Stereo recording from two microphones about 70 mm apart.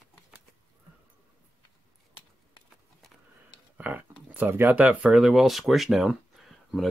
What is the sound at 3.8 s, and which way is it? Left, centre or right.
Speech, right.